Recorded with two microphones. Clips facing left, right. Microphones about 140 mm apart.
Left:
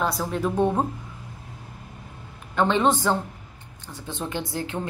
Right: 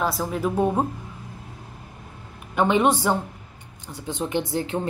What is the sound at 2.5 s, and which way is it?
Speech, 10° right (ahead or behind).